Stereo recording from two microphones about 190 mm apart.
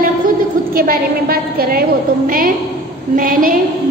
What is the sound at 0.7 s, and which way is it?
A woman's voice, 50° right (ahead or behind).